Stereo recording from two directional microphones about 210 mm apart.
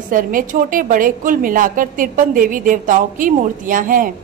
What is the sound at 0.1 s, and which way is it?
A woman's voice, 40° right (ahead or behind).